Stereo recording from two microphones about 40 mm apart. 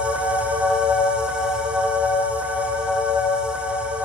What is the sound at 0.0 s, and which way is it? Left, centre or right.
Music, right.